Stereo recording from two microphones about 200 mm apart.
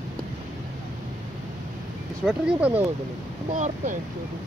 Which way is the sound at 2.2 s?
5° right (ahead or behind).